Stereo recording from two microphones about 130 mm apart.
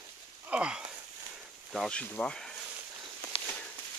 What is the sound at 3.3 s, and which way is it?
Walk, 45° left (ahead or behind).